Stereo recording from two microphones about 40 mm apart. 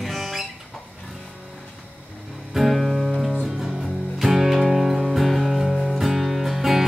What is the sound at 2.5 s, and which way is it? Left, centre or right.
Music, centre.